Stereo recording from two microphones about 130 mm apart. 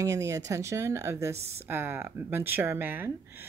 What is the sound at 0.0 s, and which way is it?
Speech, 25° right (ahead or behind).